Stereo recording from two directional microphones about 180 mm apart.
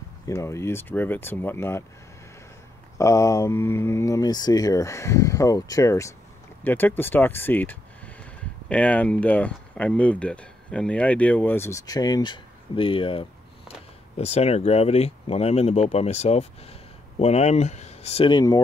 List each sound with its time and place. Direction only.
0.3 s speech: 15° left (ahead or behind)
3.0 s speech: 15° left (ahead or behind)